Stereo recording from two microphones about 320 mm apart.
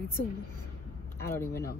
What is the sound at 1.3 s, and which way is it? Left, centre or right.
Speech, centre.